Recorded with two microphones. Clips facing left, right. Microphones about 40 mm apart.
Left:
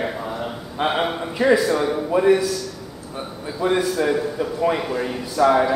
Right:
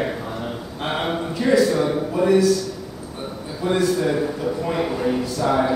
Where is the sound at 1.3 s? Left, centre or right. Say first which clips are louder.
Left 2 dB; left.